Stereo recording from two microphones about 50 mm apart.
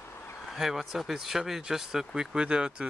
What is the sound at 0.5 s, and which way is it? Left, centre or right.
Speech, centre.